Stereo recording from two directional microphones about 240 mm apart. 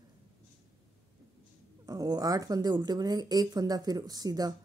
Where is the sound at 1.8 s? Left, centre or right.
Centre.